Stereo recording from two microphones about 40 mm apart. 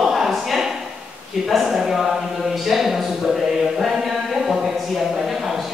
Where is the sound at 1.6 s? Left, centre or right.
Centre.